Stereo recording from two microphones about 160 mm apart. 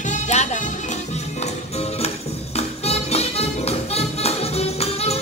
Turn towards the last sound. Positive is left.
turn(degrees=40)  # may be behind; listen again after turning